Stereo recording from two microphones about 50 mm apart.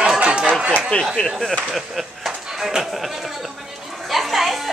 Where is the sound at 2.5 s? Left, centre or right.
Centre.